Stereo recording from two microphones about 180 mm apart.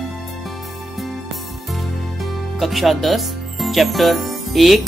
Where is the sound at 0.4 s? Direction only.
Centre (ahead or behind).